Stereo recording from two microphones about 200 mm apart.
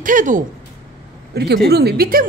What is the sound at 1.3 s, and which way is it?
Speech, 55° right (ahead or behind).